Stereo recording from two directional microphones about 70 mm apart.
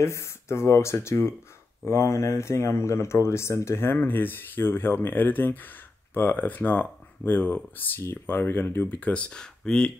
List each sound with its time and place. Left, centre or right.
0.0 s speech: left; by 9.9 s centre